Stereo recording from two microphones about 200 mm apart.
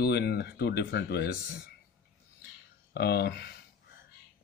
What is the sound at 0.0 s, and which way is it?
Speech, 50° left (ahead or behind).